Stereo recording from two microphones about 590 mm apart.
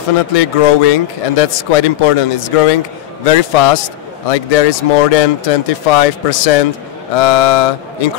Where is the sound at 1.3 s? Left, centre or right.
Left.